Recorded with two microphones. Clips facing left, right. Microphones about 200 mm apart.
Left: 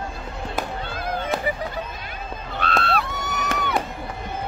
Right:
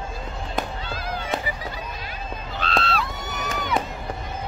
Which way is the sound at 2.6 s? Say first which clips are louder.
Left 2 dB; 55° left (ahead or behind).